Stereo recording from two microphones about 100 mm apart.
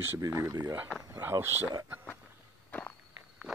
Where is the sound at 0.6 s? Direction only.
20° right (ahead or behind).